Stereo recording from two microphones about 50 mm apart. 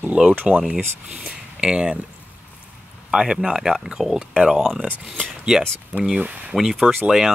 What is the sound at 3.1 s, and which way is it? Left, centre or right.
Speech, centre.